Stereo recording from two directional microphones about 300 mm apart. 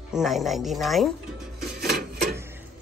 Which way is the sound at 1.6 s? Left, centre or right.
Right.